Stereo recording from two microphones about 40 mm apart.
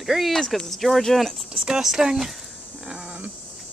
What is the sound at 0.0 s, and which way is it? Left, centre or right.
Speech, centre.